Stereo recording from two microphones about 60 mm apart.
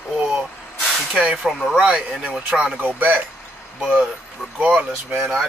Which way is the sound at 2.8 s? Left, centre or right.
Right.